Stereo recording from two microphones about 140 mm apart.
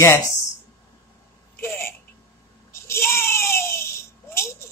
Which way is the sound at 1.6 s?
15° left (ahead or behind).